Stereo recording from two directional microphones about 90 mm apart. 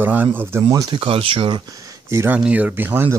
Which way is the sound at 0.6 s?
40° right (ahead or behind).